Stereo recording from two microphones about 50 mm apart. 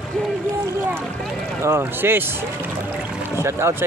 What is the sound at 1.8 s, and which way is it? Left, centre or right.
Speech, right.